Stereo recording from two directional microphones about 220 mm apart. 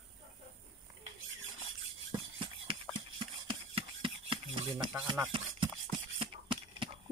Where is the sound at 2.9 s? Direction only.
20° right (ahead or behind).